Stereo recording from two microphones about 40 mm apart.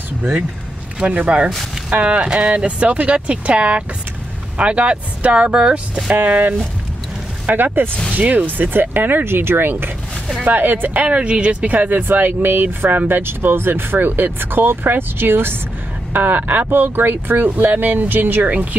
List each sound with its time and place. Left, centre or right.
0.9 s speech: right
6.1 s speech: right
7.5 s speech: right
8.1 s speech: right
9.2 s speech: right
10.4 s speech: right
11.1 s speech: right
16.1 s speech: right
18.4 s speech: right